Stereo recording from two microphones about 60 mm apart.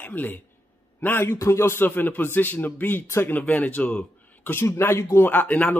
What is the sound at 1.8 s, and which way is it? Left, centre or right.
Speech, left.